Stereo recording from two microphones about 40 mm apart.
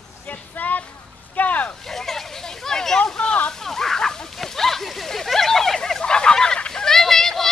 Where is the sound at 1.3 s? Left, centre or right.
Left.